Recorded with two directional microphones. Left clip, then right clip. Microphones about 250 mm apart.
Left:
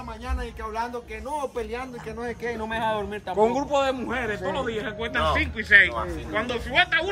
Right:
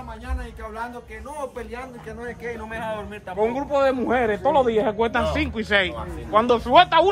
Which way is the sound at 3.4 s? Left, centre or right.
Centre.